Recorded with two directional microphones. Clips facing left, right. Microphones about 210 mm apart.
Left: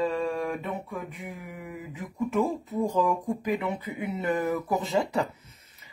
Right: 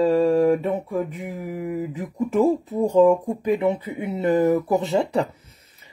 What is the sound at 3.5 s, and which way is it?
Speech, 25° right (ahead or behind).